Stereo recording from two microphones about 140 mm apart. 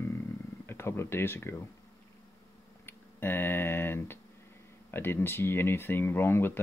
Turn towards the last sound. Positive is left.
turn(degrees=15)  # may be behind; listen again after turning